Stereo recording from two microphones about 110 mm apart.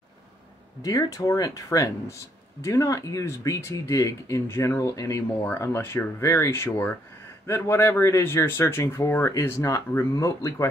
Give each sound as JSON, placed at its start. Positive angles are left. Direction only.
{"t": 0.8, "sound": "speech", "side_deg": 30}